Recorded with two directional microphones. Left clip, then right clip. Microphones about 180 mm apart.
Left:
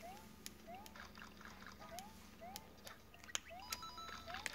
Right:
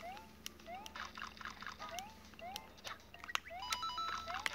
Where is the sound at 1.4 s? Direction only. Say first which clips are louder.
Right 8 dB; 20° left (ahead or behind).